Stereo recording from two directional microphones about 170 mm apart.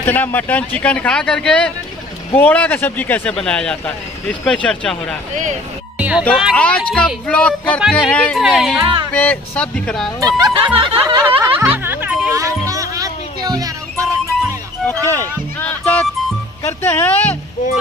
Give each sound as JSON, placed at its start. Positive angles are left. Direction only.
{"t": 0.0, "sound": "speech", "side_deg": 10}
{"t": 5.3, "sound": "speech", "side_deg": -45}
{"t": 5.9, "sound": "music", "side_deg": -5}
{"t": 6.5, "sound": "speech", "side_deg": 5}
{"t": 8.8, "sound": "speech", "side_deg": -30}
{"t": 9.1, "sound": "speech", "side_deg": 10}
{"t": 10.2, "sound": "speech", "side_deg": -25}
{"t": 11.2, "sound": "speech", "side_deg": -10}
{"t": 12.4, "sound": "music", "side_deg": -20}
{"t": 14.9, "sound": "music", "side_deg": 10}
{"t": 16.6, "sound": "speech", "side_deg": 10}